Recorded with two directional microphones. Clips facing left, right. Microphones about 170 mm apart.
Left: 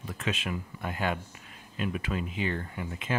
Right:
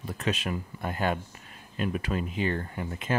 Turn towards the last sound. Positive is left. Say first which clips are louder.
# right 3 dB
turn(degrees=-40)  # may be behind; listen again after turning